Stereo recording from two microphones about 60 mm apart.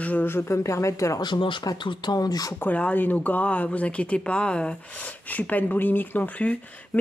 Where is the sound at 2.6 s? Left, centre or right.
Left.